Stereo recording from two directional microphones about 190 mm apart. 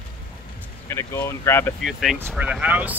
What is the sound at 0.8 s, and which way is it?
Speech, 15° left (ahead or behind).